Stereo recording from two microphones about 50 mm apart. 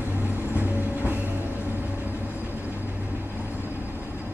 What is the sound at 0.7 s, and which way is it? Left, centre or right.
Music, left.